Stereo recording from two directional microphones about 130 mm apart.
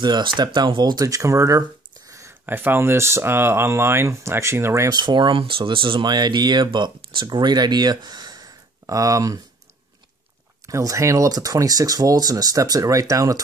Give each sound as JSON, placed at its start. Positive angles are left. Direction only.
{"t": 0.0, "sound": "speech", "side_deg": -35}
{"t": 4.8, "sound": "speech", "side_deg": -35}
{"t": 10.7, "sound": "speech", "side_deg": -25}